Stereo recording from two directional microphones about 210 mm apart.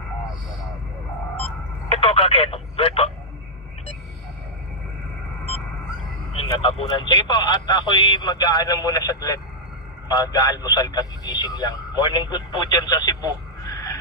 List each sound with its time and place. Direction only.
1.3 s telephone dialing: 30° left (ahead or behind)
6.3 s speech: 25° left (ahead or behind)